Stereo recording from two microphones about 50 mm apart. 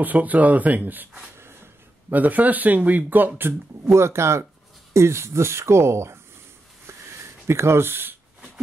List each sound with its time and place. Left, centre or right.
0.0 s speech: right
3.8 s speech: right
6.9 s a sound: right